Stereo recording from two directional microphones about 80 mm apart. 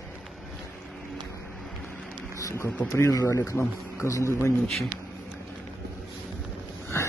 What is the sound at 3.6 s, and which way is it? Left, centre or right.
Speech, left.